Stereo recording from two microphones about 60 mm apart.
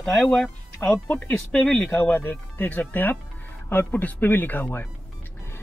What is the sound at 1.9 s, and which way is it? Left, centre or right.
Speech, left.